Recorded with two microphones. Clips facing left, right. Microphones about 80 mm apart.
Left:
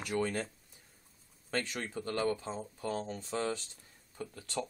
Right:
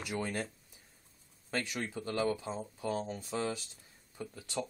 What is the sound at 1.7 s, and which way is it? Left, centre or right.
Speech, centre.